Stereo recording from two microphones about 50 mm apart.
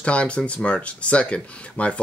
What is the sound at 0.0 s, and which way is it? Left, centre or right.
Speech, left.